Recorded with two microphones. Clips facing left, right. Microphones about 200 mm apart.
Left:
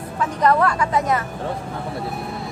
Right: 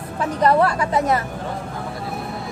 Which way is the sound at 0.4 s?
30° right (ahead or behind).